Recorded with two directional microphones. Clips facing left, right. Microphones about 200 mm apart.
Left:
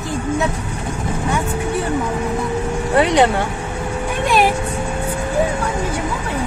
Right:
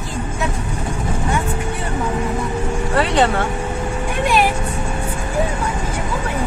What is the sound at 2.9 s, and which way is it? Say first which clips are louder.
Speech: left 3 dB; 15° left (ahead or behind).